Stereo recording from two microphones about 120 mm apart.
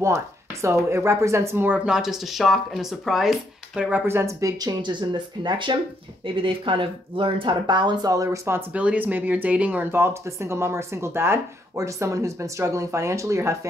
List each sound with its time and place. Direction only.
0.0 s speech: 25° right (ahead or behind)
1.9 s speech: 5° right (ahead or behind)
4.0 s speech: 20° right (ahead or behind)
4.8 s speech: 40° right (ahead or behind); by 13.6 s 25° right (ahead or behind)